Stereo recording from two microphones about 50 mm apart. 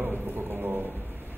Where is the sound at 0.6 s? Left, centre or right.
Right.